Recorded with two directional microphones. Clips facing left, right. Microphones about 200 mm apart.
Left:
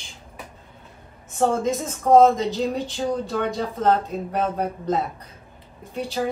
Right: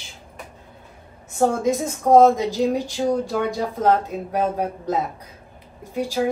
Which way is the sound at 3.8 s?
10° right (ahead or behind).